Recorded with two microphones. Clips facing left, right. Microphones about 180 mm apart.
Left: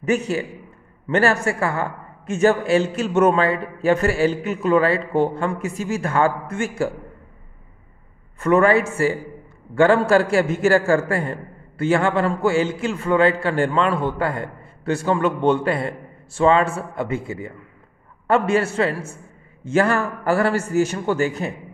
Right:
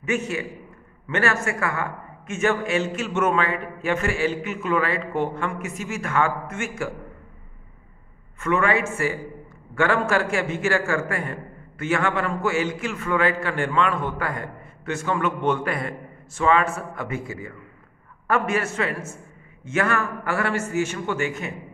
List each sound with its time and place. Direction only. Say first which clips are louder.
0.0 s a man's voice: left 5 dB; 35° left (ahead or behind)
8.4 s a man's voice: left 6 dB; 35° left (ahead or behind)